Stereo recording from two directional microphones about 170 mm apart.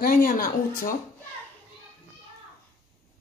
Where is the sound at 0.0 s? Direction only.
55° left (ahead or behind).